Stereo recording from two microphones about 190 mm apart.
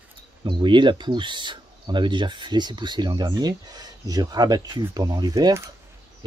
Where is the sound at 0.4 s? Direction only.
25° right (ahead or behind).